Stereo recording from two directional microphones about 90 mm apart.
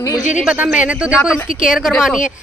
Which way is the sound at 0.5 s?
15° right (ahead or behind).